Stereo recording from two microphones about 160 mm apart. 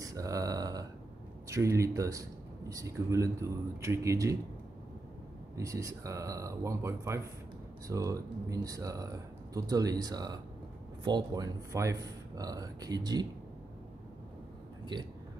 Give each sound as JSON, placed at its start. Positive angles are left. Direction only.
{"t": 0.0, "sound": "a sound", "side_deg": -20}
{"t": 1.5, "sound": "speech", "side_deg": -20}
{"t": 5.6, "sound": "speech", "side_deg": -20}